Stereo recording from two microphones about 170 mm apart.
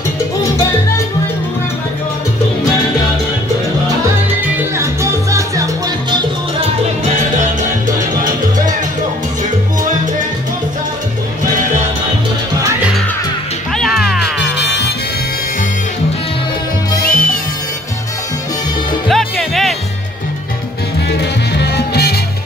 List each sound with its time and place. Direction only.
5.3 s music: 20° right (ahead or behind)
13.7 s music: centre (ahead or behind)
14.6 s music: 90° left
17.0 s music: 5° left (ahead or behind)
19.0 s music: centre (ahead or behind)
21.2 s music: 80° left